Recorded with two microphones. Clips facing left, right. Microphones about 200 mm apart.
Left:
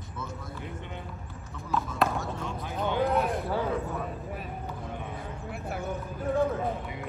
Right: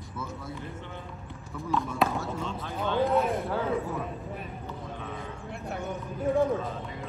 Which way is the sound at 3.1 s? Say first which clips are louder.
Right 1 dB; centre (ahead or behind).